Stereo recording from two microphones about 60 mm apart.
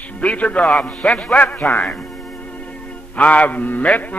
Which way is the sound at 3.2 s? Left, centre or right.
Left.